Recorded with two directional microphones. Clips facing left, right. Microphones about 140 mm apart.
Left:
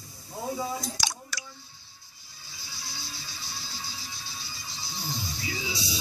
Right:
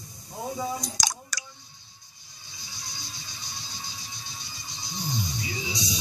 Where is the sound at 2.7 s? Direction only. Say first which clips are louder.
Left 1 dB; 20° right (ahead or behind).